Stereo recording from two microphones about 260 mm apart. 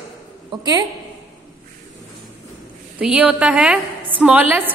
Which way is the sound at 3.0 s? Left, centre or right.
Centre.